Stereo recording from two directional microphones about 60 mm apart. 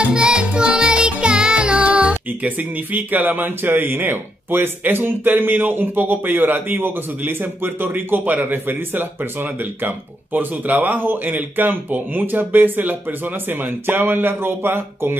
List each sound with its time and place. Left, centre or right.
0.0 s music: centre; by 15.1 s right